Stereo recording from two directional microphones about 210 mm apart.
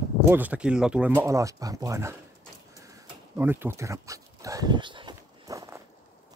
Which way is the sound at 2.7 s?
15° right (ahead or behind).